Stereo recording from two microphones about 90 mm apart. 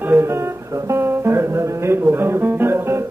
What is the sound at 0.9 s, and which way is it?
Music, 30° right (ahead or behind).